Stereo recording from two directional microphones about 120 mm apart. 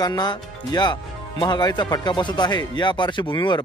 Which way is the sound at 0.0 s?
35° left (ahead or behind).